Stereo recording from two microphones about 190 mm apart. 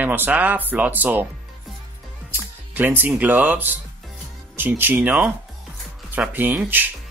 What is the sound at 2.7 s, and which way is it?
Speech, 10° right (ahead or behind).